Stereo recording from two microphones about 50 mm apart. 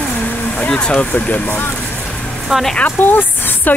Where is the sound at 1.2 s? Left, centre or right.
Left.